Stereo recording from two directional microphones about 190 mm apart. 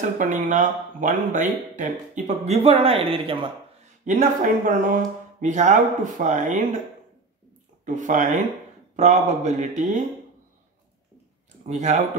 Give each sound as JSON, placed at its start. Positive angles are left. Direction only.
{"t": 0.0, "sound": "speech", "side_deg": -40}
{"t": 4.0, "sound": "speech", "side_deg": -45}
{"t": 7.8, "sound": "speech", "side_deg": -40}
{"t": 11.6, "sound": "speech", "side_deg": -35}